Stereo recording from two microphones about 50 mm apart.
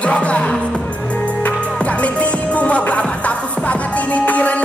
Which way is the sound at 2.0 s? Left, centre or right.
Left.